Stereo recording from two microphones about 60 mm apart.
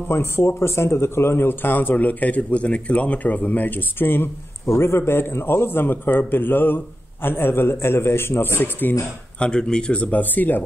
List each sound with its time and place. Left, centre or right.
0.1 s speech: left
9.4 s speech: centre; by 10.6 s left